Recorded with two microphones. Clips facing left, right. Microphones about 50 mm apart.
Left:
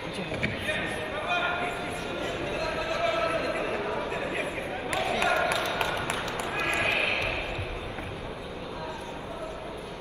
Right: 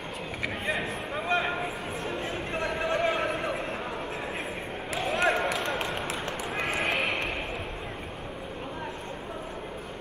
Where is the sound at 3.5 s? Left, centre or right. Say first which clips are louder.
Left 3 dB; left.